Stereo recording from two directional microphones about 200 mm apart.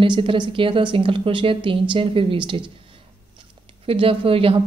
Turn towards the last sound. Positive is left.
turn(degrees=-30)  # may be behind; listen again after turning